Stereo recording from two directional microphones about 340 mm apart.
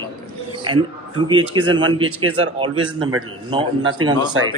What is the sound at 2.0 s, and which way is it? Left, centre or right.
Speech, right.